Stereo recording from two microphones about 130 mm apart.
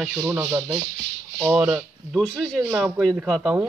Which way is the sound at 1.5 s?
10° right (ahead or behind).